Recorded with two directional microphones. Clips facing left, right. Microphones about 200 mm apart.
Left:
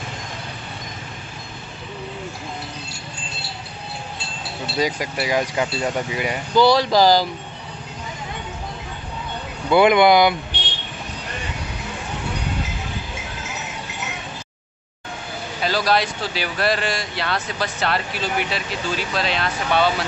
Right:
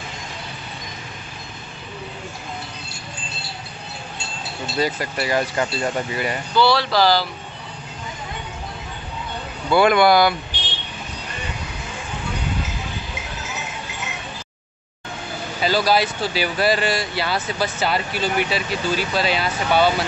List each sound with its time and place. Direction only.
4.7 s speech: 10° left (ahead or behind)
6.6 s speech: 45° left (ahead or behind)
9.7 s speech: 20° left (ahead or behind)
15.6 s speech: centre (ahead or behind)